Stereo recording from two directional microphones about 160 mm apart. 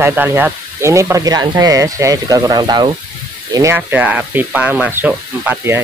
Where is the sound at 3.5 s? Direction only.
15° right (ahead or behind).